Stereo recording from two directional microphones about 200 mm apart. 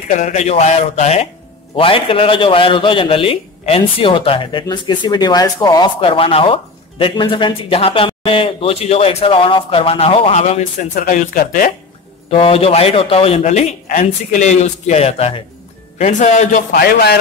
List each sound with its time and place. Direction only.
0.2 s a man's voice: 35° left (ahead or behind)
12.3 s speech: 30° left (ahead or behind); by 17.2 s 50° left (ahead or behind)